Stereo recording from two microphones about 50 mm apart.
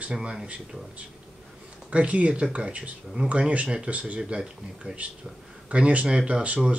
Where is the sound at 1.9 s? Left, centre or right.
Right.